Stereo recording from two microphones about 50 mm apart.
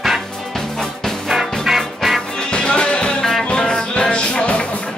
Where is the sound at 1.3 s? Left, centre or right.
Centre.